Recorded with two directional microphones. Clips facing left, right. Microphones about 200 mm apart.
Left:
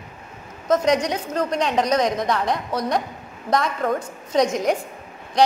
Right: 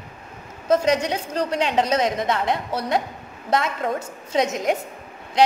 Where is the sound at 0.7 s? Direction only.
25° right (ahead or behind).